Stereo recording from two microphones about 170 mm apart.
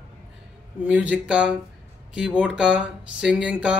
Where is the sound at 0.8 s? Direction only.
5° right (ahead or behind).